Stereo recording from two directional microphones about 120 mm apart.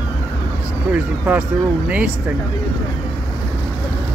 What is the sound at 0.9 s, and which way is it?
Speech, 15° right (ahead or behind).